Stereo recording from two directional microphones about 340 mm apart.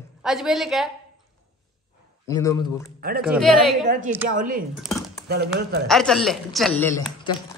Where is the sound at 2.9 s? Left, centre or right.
Right.